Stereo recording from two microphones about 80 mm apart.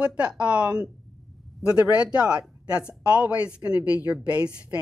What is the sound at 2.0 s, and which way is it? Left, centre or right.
A woman's voice, centre.